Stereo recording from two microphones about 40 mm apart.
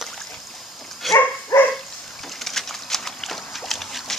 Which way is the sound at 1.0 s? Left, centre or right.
Centre.